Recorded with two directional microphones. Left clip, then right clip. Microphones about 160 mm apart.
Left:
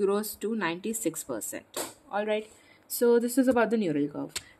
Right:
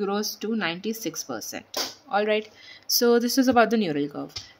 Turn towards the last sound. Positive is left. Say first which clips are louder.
# right 2 dB
turn(degrees=-5)  # may be behind; listen again after turning